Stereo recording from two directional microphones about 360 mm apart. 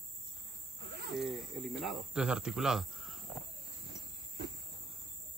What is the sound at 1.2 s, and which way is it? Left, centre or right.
Speech, centre.